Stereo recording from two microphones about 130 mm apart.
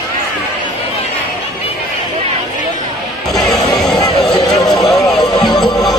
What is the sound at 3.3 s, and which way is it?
Music, 30° left (ahead or behind).